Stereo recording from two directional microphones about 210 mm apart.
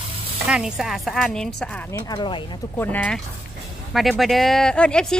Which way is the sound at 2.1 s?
20° left (ahead or behind).